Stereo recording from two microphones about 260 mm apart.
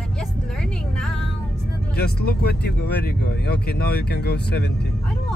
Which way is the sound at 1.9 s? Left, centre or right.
Left.